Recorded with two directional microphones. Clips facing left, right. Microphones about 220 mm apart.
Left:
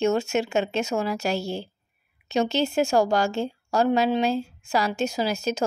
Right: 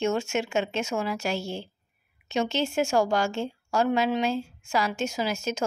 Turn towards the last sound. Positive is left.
turn(degrees=35)  # may be behind; listen again after turning